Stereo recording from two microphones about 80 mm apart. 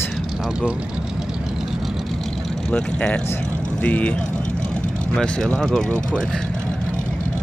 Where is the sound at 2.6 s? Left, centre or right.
Centre.